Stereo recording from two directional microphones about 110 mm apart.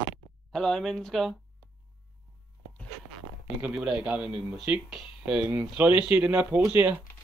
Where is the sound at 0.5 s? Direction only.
5° left (ahead or behind).